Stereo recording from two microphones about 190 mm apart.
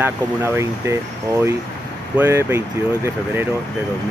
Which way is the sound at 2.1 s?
10° right (ahead or behind).